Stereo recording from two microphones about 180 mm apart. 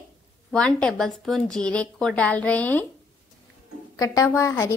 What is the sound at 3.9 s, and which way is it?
Speech, 20° left (ahead or behind).